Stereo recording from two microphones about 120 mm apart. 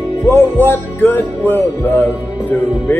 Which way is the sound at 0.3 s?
20° left (ahead or behind).